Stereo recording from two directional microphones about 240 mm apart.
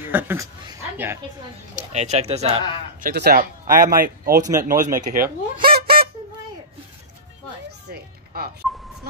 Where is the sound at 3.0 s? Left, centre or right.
Right.